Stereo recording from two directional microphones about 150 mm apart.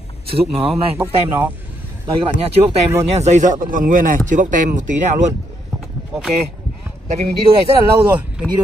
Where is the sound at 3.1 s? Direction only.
50° right (ahead or behind).